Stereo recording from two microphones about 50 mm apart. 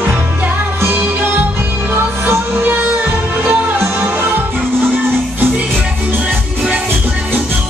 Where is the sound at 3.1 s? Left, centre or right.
Right.